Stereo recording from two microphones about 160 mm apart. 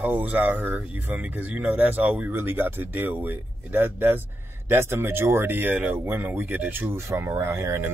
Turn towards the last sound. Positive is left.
turn(degrees=-15)  # may be behind; listen again after turning